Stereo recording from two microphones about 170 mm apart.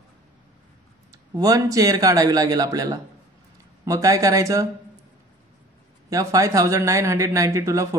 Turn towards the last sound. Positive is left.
turn(degrees=-20)  # may be behind; listen again after turning